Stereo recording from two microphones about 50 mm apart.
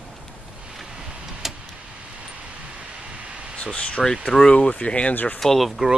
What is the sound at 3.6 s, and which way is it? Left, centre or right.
Speech, left.